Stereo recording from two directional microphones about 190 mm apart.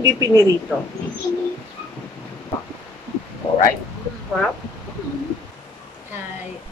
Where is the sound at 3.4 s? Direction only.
25° left (ahead or behind).